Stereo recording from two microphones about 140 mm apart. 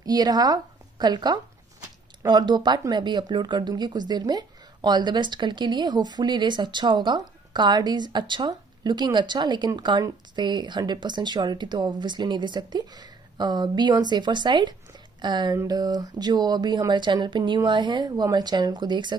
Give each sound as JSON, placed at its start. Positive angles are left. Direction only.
{"t": 0.0, "sound": "a woman's voice", "side_deg": -25}